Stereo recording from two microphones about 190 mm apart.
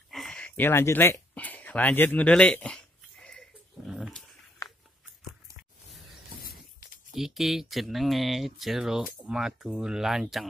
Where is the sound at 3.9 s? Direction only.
Centre (ahead or behind).